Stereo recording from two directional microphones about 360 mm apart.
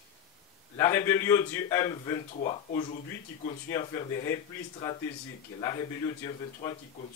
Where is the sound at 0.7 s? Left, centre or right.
Centre.